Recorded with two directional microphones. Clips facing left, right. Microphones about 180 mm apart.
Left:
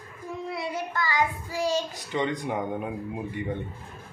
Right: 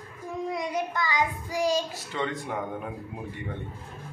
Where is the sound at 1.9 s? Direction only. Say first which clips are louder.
Left 3 dB; 15° left (ahead or behind).